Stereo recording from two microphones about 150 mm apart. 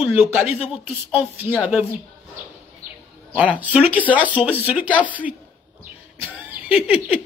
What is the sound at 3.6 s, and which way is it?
Speech, 10° right (ahead or behind).